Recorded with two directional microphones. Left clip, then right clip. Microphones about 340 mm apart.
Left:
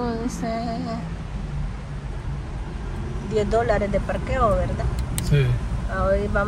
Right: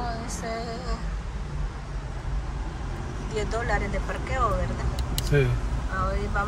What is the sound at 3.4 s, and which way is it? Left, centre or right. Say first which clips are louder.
Speech: left 7 dB; centre.